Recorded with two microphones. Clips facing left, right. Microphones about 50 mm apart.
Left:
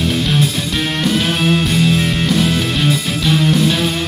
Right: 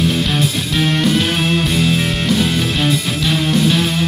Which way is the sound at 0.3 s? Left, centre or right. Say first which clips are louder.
Left 1 dB; centre.